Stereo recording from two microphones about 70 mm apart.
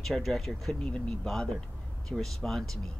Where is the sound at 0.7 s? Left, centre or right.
Centre.